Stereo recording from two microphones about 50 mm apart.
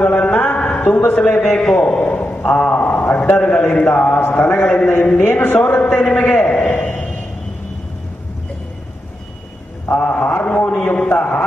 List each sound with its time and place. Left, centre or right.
0.0 s a sound: left
0.7 s a sound: left
1.0 s speech: left
1.3 s a man's voice: centre
1.8 s a man's voice: left
3.3 s a man's voice: centre
3.9 s a man's voice: left
5.3 s speech: left
5.6 s a man's voice: left
6.7 s a sound: left
9.8 s mantra: left
11.1 s a man's voice: left